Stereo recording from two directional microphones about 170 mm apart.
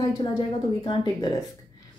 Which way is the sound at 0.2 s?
30° left (ahead or behind).